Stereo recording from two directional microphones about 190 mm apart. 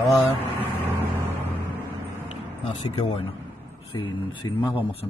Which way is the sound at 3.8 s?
30° left (ahead or behind).